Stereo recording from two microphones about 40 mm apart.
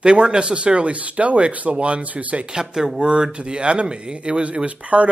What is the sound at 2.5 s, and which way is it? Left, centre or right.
Speech, centre.